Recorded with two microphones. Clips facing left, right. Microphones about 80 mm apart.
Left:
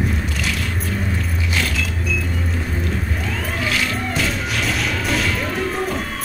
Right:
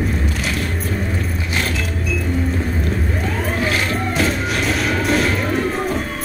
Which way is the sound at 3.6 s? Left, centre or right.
Right.